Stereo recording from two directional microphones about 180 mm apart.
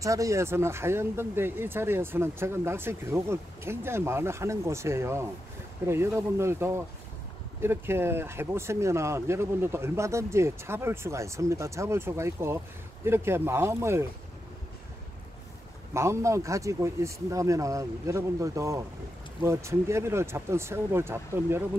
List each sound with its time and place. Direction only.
0.0 s speech: 15° right (ahead or behind)
15.9 s speech: 15° right (ahead or behind)